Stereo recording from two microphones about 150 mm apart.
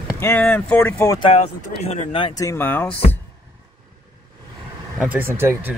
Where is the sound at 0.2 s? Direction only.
10° left (ahead or behind).